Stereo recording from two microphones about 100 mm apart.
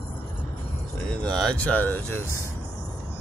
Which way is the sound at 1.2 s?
10° left (ahead or behind).